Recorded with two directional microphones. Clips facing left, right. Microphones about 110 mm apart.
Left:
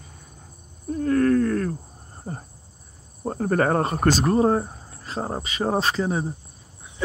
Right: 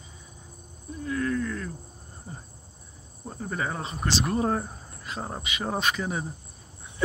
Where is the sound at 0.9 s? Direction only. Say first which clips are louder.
Left 9 dB; 55° left (ahead or behind).